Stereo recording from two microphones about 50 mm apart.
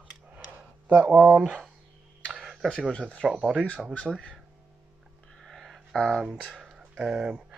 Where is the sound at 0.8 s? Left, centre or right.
Right.